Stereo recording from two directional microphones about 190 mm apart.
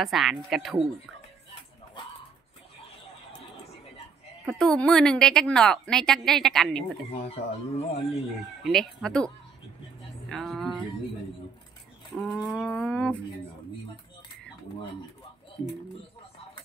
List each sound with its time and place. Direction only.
0.0 s a woman's voice: centre (ahead or behind)
4.5 s a woman's voice: centre (ahead or behind)
7.1 s speech: 30° left (ahead or behind)
8.6 s a woman's voice: centre (ahead or behind)
10.3 s music: centre (ahead or behind)
12.2 s a woman's voice: centre (ahead or behind)